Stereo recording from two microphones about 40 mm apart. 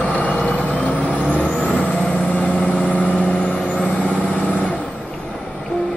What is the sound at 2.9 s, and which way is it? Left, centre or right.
Vehicle, left.